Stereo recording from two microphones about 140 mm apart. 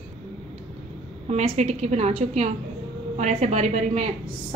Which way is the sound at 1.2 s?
50° right (ahead or behind).